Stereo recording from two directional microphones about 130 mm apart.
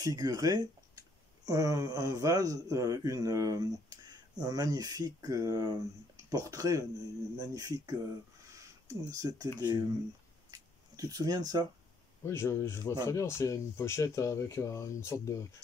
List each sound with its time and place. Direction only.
0.0 s a man's voice: 30° right (ahead or behind)
10.5 s a sound: 30° right (ahead or behind)
12.3 s speech: 20° left (ahead or behind)